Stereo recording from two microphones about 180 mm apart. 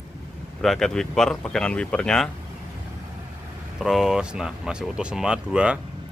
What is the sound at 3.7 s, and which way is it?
Speech, centre (ahead or behind).